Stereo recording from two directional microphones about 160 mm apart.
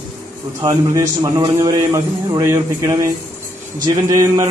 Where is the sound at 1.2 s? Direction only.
20° right (ahead or behind).